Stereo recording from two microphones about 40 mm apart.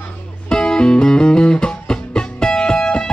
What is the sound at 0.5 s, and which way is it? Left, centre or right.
Music, centre.